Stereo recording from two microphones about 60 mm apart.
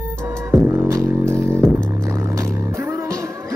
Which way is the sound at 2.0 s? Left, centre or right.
Right.